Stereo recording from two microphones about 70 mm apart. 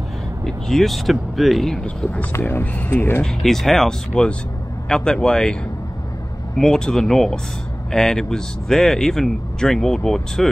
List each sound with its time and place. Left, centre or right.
0.5 s speech: centre
2.3 s speech: left
3.3 s speech: centre